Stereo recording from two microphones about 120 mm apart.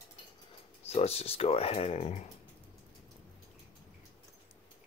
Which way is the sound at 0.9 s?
60° left (ahead or behind).